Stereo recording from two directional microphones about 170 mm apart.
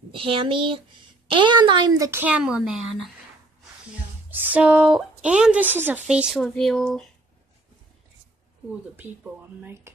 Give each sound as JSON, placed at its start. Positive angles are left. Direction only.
{"t": 0.1, "sound": "speech", "side_deg": -30}
{"t": 4.3, "sound": "speech", "side_deg": -10}
{"t": 9.6, "sound": "speech", "side_deg": -10}